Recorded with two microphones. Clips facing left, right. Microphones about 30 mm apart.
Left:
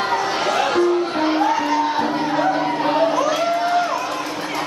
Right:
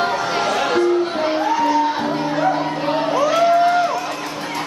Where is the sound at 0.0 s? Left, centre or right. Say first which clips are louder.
Right 1 dB; centre.